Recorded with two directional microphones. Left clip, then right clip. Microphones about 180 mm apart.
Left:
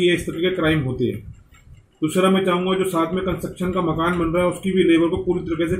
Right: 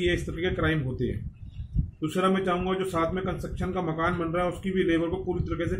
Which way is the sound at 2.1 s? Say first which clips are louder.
Left 7 dB; 10° right (ahead or behind).